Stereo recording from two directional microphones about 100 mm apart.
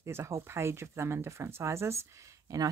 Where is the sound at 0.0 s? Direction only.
25° right (ahead or behind).